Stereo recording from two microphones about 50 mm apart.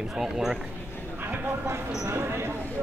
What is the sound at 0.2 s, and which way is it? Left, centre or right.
Speech, centre.